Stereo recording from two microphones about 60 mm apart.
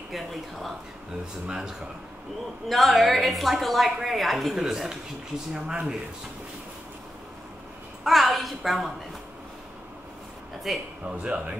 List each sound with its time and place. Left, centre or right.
0.1 s a woman's voice: centre
1.2 s speech: centre
2.7 s a woman's voice: centre
8.0 s a sound: centre
10.7 s a woman's voice: centre
11.2 s speech: centre